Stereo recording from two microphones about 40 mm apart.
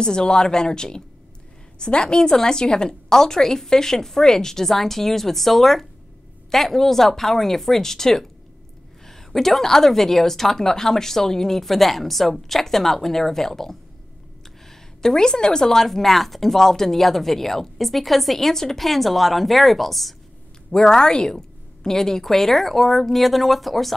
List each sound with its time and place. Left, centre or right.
0.0 s a woman's voice: centre